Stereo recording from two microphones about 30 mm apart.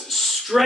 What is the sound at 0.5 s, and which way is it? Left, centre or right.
Speech, centre.